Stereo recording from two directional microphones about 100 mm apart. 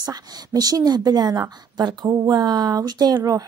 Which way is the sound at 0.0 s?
40° right (ahead or behind).